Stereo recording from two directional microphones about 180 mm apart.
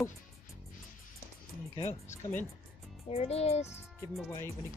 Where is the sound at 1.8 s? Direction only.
40° left (ahead or behind).